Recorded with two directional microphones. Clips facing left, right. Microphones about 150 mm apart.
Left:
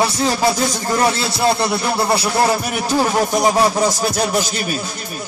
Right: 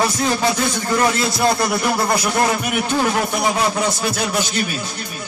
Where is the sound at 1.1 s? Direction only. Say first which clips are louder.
Even; 30° left (ahead or behind).